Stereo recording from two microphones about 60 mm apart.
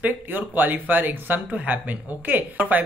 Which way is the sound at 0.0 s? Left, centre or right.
Right.